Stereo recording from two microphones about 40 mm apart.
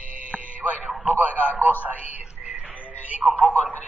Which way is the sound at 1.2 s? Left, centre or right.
Right.